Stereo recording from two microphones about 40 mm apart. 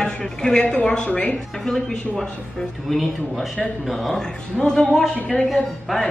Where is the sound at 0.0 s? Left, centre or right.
Left.